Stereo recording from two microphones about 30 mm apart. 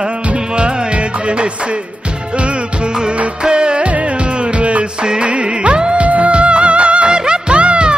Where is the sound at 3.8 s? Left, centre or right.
Right.